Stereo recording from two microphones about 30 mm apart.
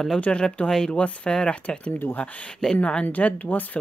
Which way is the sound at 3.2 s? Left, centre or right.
Left.